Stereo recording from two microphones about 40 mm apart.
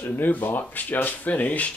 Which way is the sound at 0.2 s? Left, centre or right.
Left.